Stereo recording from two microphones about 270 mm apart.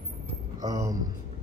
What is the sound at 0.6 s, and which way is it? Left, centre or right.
Speech, centre.